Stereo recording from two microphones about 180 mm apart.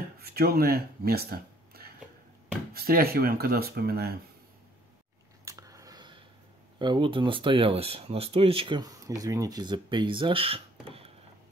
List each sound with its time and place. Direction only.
0.2 s speech: 60° right (ahead or behind)
5.4 s a sound: 20° right (ahead or behind)
6.8 s speech: 25° right (ahead or behind)